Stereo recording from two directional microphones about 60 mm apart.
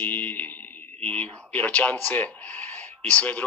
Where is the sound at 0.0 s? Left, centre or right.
Left.